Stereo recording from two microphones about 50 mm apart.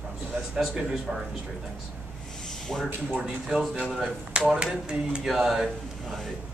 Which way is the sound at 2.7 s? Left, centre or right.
Centre.